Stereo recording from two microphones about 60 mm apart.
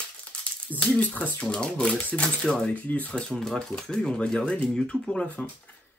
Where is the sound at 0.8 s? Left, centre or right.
Left.